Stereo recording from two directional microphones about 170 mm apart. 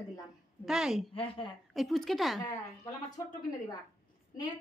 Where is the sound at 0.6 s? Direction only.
5° right (ahead or behind).